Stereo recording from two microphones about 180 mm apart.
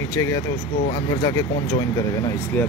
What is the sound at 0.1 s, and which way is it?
Speech, 20° left (ahead or behind).